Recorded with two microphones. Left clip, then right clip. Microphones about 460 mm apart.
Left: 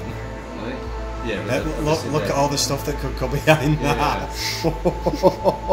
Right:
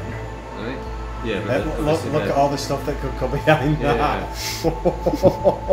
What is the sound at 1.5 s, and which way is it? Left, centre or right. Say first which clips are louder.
A man's voice: right 1 dB; centre.